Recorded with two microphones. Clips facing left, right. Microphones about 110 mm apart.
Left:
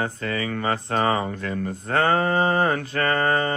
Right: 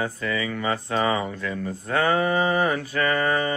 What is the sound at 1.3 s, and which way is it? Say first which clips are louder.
Speech: left 1 dB; 45° left (ahead or behind).